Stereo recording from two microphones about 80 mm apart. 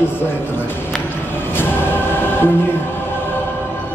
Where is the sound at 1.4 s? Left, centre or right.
Left.